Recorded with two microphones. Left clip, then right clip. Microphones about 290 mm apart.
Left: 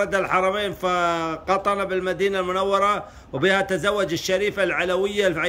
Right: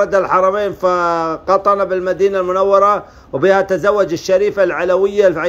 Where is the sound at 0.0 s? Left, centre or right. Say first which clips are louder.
Right 8 dB; centre.